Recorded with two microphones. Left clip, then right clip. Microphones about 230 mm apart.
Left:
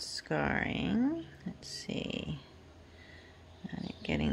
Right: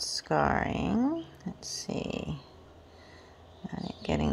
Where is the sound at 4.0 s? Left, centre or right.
Centre.